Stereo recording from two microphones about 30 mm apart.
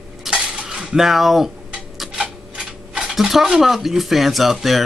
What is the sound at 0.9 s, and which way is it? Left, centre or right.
Speech, centre.